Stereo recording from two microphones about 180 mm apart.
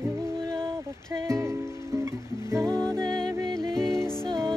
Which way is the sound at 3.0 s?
5° left (ahead or behind).